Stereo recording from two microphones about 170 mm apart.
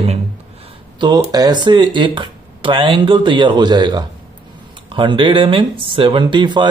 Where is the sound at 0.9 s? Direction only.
25° right (ahead or behind).